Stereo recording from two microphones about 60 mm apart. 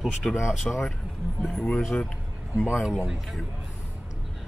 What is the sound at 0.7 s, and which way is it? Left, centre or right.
Speech, centre.